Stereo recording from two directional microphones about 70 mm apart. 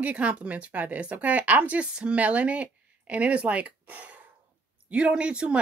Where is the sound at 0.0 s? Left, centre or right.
Right.